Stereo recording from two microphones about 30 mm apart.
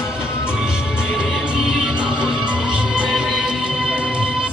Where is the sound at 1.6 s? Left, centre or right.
Centre.